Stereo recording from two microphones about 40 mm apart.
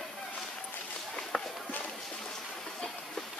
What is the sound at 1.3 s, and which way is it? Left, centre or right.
Walk, centre.